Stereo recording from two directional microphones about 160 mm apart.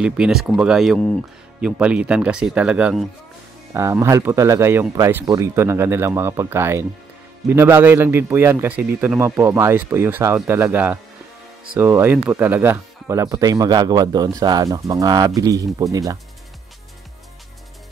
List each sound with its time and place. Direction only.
0.0 s speech: 5° right (ahead or behind)
3.7 s speech: 15° right (ahead or behind)